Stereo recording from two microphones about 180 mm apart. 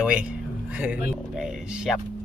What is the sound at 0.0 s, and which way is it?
Speech, 5° right (ahead or behind).